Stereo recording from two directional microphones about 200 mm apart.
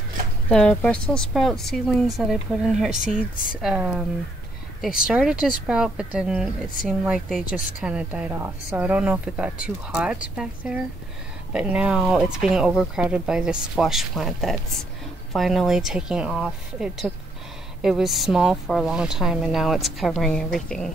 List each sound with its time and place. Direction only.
0.5 s speech: 5° left (ahead or behind)
5.0 s speech: 5° right (ahead or behind)
7.4 s a woman's voice: 40° left (ahead or behind)
7.8 s speech: 5° right (ahead or behind)